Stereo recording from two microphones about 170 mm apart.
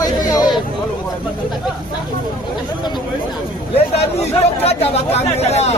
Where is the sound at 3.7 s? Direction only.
40° left (ahead or behind).